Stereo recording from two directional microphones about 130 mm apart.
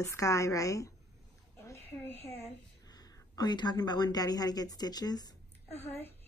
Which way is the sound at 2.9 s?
30° left (ahead or behind).